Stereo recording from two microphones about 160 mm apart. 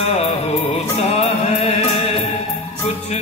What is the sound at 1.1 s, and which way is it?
Music, 40° left (ahead or behind).